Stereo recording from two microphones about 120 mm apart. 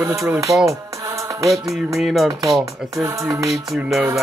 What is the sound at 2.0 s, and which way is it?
Music, centre (ahead or behind).